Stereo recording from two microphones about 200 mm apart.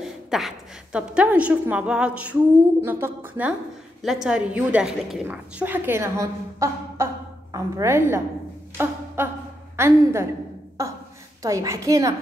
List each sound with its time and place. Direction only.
0.0 s a woman's voice: centre (ahead or behind)
8.7 s music: 10° right (ahead or behind)
9.8 s a woman's voice: 15° right (ahead or behind)
10.8 s a sound: 15° right (ahead or behind)
11.4 s a woman's voice: 15° right (ahead or behind)